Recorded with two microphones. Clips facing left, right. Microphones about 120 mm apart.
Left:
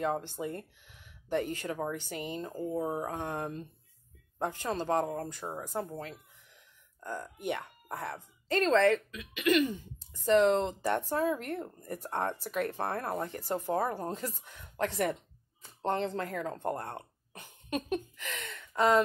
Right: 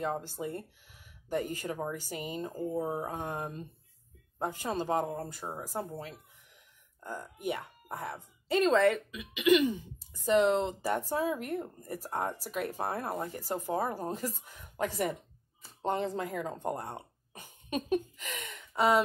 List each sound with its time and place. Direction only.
0.0 s speech: 5° right (ahead or behind)